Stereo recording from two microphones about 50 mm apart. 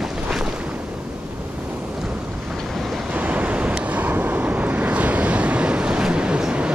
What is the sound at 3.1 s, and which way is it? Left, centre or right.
Waves, right.